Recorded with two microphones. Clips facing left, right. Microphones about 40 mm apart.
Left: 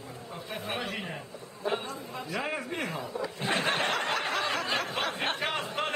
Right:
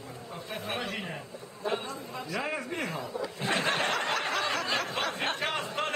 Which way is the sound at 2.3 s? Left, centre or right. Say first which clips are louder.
Even; centre.